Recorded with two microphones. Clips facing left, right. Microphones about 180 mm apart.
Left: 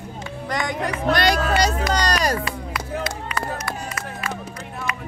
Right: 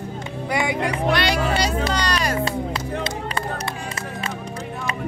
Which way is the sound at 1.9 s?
45° left (ahead or behind).